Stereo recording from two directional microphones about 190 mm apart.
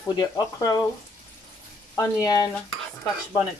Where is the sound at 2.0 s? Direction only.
20° left (ahead or behind).